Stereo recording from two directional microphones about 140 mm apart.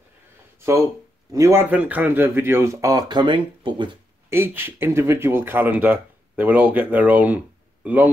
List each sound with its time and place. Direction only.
1.3 s speech: 20° right (ahead or behind)
4.3 s speech: 15° right (ahead or behind)